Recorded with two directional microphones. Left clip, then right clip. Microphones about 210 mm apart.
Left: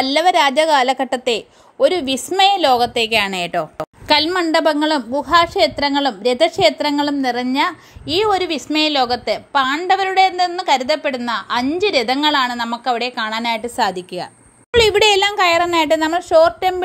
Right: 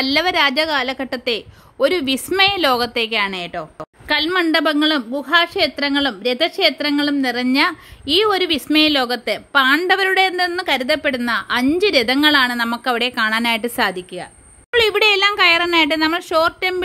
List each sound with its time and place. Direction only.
0.0 s a woman's voice: 10° right (ahead or behind); by 3.6 s 10° left (ahead or behind)
4.3 s a woman's voice: 5° right (ahead or behind); by 13.8 s 25° right (ahead or behind)
14.7 s speech: centre (ahead or behind)
15.3 s a woman's voice: 10° right (ahead or behind)